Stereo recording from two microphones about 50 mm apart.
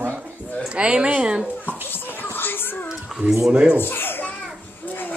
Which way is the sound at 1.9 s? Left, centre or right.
Left.